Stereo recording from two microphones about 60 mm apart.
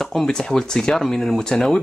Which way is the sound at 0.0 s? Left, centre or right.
Centre.